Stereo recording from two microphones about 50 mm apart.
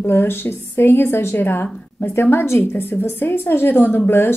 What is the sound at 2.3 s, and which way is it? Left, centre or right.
Speech, left.